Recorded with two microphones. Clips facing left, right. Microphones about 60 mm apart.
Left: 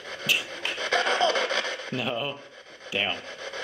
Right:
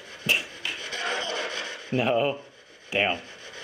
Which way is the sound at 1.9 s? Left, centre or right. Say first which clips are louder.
Right 8 dB; right.